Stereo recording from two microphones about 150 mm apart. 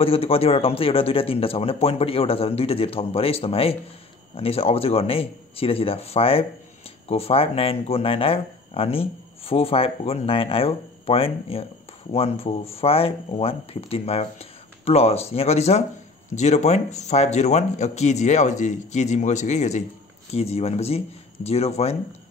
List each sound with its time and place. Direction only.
0.0 s speech: 40° left (ahead or behind)